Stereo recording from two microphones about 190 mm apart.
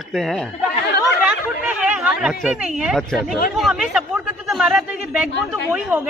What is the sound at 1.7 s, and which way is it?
Speech, 5° right (ahead or behind).